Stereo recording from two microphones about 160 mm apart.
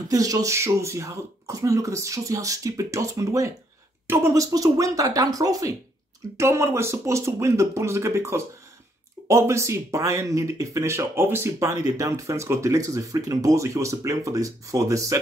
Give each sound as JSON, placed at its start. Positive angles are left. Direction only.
{"t": 0.1, "sound": "speech", "side_deg": -20}